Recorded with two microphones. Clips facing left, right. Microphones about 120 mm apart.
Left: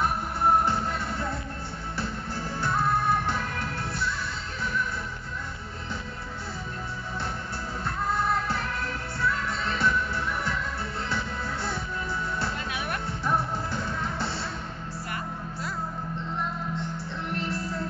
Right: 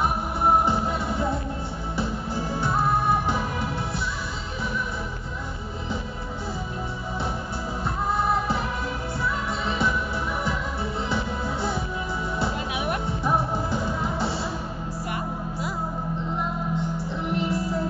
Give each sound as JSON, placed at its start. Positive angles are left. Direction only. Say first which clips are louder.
{"t": 0.0, "sound": "music", "louder": "right 2 dB", "side_deg": -10}
{"t": 8.1, "sound": "music", "louder": "right 3 dB", "side_deg": -5}
{"t": 9.7, "sound": "music", "louder": "right 1 dB", "side_deg": -5}
{"t": 12.4, "sound": "music", "louder": "right 5 dB", "side_deg": -20}
{"t": 13.8, "sound": "music", "louder": "right 4 dB", "side_deg": -5}
{"t": 17.3, "sound": "music", "louder": "right 6 dB", "side_deg": -5}